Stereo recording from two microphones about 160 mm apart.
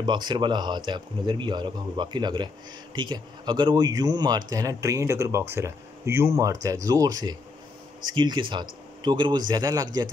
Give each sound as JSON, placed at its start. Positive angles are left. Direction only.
{"t": 0.0, "sound": "speech", "side_deg": -30}